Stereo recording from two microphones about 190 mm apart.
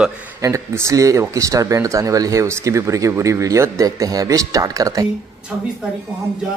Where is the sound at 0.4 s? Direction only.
15° right (ahead or behind).